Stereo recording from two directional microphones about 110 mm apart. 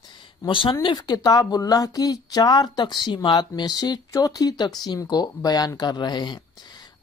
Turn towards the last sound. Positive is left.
turn(degrees=45)  # may be behind; listen again after turning